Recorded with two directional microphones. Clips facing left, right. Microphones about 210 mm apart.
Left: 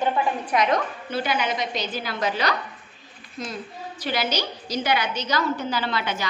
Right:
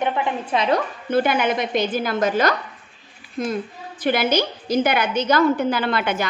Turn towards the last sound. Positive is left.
turn(degrees=-55)  # may be behind; listen again after turning